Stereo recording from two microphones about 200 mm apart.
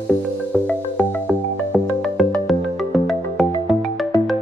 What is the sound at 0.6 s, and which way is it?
Music, 5° left (ahead or behind).